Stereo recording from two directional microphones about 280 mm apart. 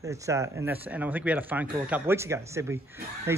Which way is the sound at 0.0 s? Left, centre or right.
Centre.